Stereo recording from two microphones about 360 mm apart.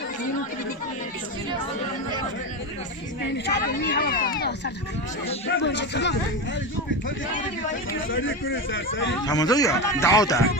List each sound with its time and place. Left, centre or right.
3.4 s speech: left
5.6 s speech: left
8.1 s speech: left
9.2 s a man's voice: centre